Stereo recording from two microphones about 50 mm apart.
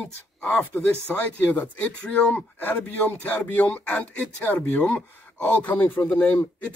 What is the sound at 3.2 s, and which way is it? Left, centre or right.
Speech, left.